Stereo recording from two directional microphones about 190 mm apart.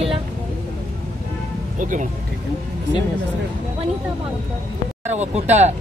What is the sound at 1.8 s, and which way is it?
Speech, 45° right (ahead or behind).